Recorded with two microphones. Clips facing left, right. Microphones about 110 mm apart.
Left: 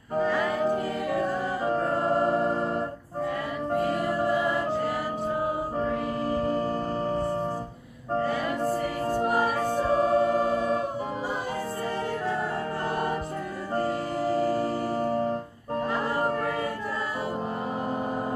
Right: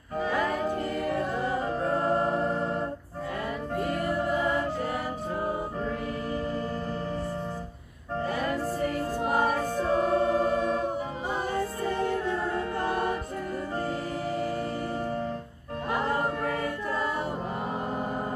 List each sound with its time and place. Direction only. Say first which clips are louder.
0.2 s music: left 2 dB; centre (ahead or behind)
1.7 s music: left 3 dB; 35° left (ahead or behind)
9.8 s music: left 2 dB; 35° left (ahead or behind)
14.5 s music: left 4 dB; 35° left (ahead or behind)